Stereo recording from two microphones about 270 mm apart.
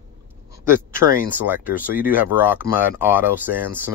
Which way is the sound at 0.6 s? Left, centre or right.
Centre.